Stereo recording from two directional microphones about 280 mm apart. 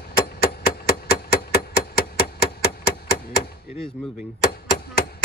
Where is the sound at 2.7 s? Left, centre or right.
Left.